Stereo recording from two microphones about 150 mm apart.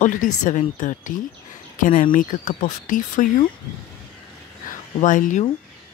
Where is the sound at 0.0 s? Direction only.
60° left (ahead or behind).